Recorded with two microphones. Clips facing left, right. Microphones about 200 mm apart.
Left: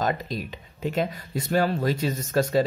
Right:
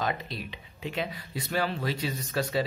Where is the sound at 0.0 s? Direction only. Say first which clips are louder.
Left 5 dB; 45° left (ahead or behind).